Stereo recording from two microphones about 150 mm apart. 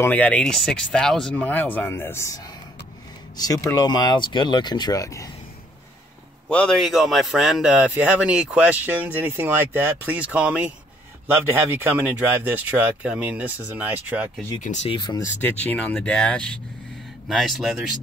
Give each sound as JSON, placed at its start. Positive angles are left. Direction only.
{"t": 0.0, "sound": "speech", "side_deg": 10}
{"t": 6.5, "sound": "speech", "side_deg": 5}
{"t": 14.6, "sound": "speech", "side_deg": 55}
{"t": 14.9, "sound": "speech", "side_deg": 30}
{"t": 15.4, "sound": "speech", "side_deg": 10}